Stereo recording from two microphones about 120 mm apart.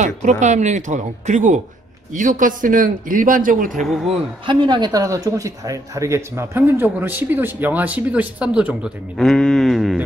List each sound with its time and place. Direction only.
0.0 s speech: 85° right
3.8 s speech: centre (ahead or behind)
4.5 s speech: 40° right (ahead or behind); by 9.9 s centre (ahead or behind)